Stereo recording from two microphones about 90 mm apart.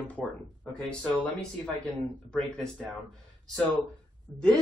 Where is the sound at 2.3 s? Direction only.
5° left (ahead or behind).